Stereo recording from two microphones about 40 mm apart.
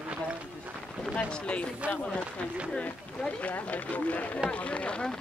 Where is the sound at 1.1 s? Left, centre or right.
Left.